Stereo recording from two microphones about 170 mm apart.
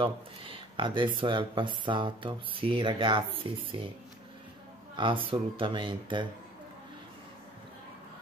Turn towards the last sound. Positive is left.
turn(degrees=-30)  # may be behind; listen again after turning